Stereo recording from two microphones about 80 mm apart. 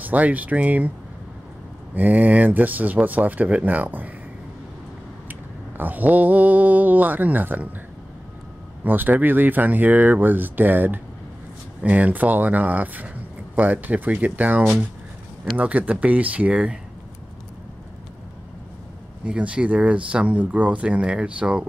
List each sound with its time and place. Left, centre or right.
0.0 s speech: right
2.0 s speech: right
5.3 s a sound: right
8.8 s speech: right
19.2 s speech: centre